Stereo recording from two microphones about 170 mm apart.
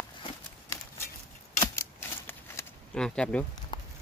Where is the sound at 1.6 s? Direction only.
15° left (ahead or behind).